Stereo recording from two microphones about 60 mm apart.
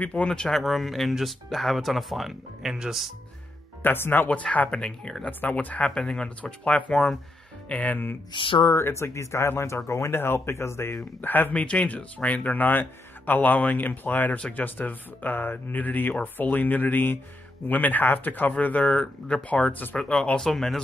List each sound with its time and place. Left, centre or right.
0.0 s speech: left
0.3 s speech: centre
3.8 s speech: left
4.3 s speech: left
5.4 s speech: left
5.9 s speech: centre
8.7 s speech: left
10.1 s speech: left
11.1 s speech: left
11.6 s speech: left
19.7 s speech: left
20.0 s speech: centre